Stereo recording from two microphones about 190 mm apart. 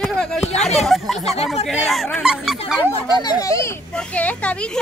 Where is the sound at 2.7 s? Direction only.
20° left (ahead or behind).